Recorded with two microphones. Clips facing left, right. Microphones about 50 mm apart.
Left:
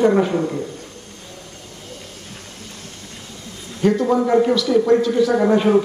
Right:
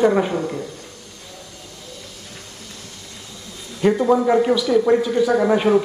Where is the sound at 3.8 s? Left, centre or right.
Centre.